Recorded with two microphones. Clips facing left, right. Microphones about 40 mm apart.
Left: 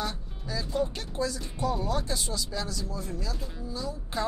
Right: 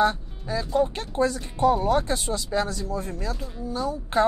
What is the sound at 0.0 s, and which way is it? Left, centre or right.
Speech, right.